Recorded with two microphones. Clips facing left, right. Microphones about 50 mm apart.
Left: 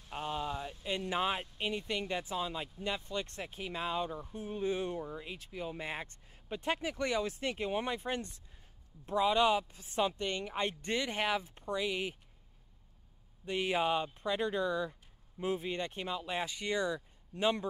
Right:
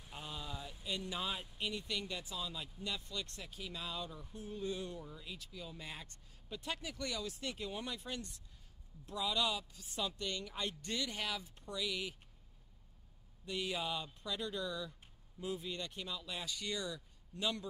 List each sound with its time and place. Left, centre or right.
0.1 s a sound: left
0.8 s speech: left
13.5 s speech: left